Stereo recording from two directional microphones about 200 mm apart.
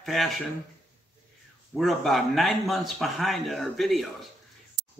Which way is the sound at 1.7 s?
Centre (ahead or behind).